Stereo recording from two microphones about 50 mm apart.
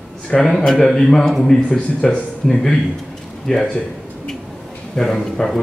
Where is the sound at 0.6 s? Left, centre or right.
Centre.